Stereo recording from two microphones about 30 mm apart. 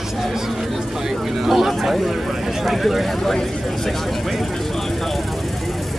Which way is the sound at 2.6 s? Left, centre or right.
Centre.